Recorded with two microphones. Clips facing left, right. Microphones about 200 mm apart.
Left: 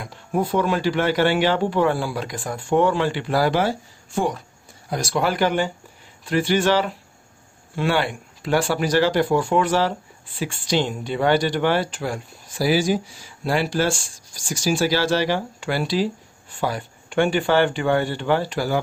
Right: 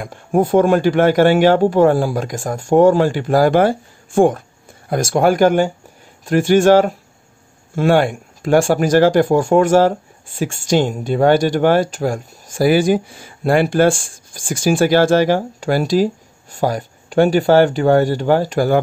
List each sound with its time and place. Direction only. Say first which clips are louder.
0.0 s speech: right 7 dB; 50° right (ahead or behind)